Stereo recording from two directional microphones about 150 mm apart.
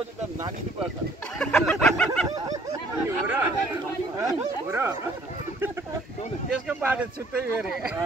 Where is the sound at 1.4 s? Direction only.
5° left (ahead or behind).